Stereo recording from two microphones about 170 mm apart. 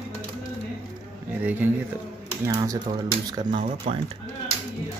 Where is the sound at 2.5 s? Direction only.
25° right (ahead or behind).